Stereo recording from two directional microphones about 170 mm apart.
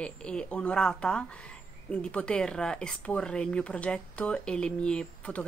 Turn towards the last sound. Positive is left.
turn(degrees=5)  # may be behind; listen again after turning